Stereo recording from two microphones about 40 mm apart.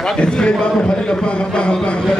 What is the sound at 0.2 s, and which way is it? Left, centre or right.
A man's voice, left.